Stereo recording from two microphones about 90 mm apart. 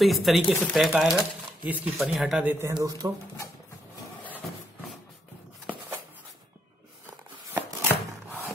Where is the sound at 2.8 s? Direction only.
40° right (ahead or behind).